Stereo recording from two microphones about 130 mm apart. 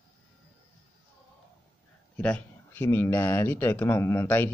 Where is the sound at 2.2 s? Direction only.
15° left (ahead or behind).